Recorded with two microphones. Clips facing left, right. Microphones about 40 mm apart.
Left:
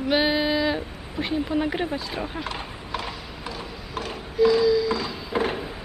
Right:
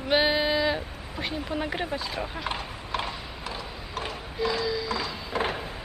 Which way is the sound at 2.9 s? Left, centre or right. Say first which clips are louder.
Right 1 dB; centre.